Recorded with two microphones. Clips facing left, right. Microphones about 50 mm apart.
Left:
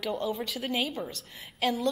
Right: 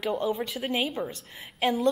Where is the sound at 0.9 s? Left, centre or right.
Centre.